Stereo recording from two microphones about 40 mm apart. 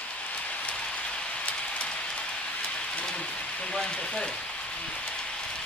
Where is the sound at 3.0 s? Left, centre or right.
Left.